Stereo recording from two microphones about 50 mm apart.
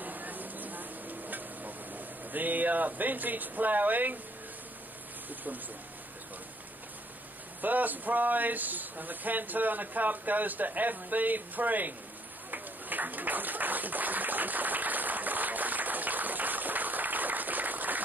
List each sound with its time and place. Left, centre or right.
0.0 s stir: right
5.3 s speech: right
7.6 s speech: right
12.4 s a sound: right